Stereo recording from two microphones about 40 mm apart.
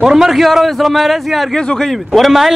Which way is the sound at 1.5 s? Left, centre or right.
Centre.